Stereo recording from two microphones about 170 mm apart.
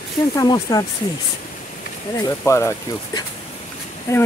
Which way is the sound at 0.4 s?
20° left (ahead or behind).